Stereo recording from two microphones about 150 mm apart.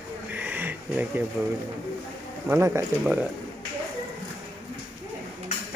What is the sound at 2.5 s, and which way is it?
Speech, 20° right (ahead or behind).